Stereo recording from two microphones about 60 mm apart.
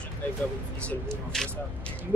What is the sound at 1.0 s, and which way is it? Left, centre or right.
Speech, centre.